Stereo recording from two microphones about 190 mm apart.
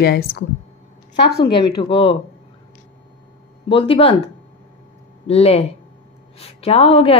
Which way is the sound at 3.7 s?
30° left (ahead or behind).